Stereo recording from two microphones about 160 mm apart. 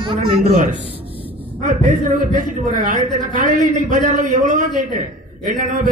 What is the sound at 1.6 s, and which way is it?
Speech, 50° right (ahead or behind).